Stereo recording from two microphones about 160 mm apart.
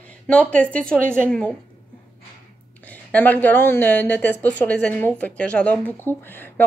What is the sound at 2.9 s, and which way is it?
Speech, 10° left (ahead or behind).